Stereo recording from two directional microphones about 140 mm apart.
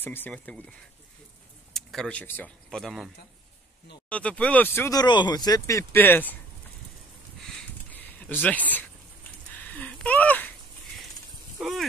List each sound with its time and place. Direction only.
0.0 s speech: 15° left (ahead or behind)
1.7 s speech: 5° left (ahead or behind)
4.1 s speech: 10° left (ahead or behind)
4.9 s speech: 30° left (ahead or behind); by 6.3 s 15° left (ahead or behind)
7.9 s a sound: 10° left (ahead or behind)
11.5 s dog: 5° right (ahead or behind)